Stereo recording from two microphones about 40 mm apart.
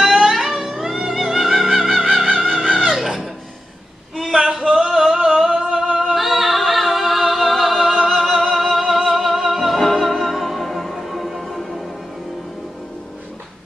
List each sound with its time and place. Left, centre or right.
0.0 s music: centre
2.3 s music: centre
4.2 s a sound: centre
5.1 s singing: centre
6.1 s singing: centre
8.2 s music: centre